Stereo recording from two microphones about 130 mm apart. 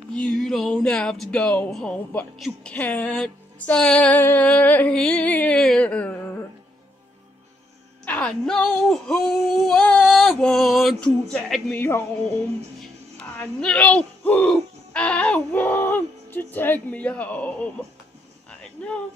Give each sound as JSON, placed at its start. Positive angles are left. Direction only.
{"t": 0.1, "sound": "speech", "side_deg": 5}
{"t": 2.7, "sound": "music", "side_deg": 10}
{"t": 8.0, "sound": "child singing", "side_deg": 10}
{"t": 11.7, "sound": "music", "side_deg": 20}
{"t": 12.8, "sound": "speech", "side_deg": 5}
{"t": 18.8, "sound": "music", "side_deg": 10}